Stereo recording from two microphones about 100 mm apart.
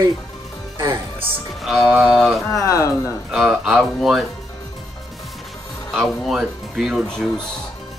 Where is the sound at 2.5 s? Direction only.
35° left (ahead or behind).